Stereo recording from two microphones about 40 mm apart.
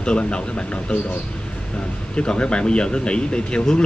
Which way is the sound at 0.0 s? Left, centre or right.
Left.